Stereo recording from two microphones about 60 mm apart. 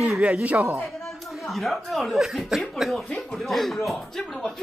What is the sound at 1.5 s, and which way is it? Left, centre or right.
Speech, centre.